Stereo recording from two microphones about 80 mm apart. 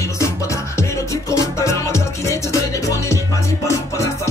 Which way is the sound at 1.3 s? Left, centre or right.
Left.